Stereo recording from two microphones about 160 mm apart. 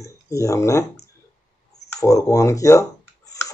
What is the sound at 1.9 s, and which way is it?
Speech, 20° left (ahead or behind).